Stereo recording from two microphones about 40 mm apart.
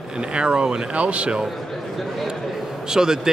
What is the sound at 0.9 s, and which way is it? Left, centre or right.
Speech, right.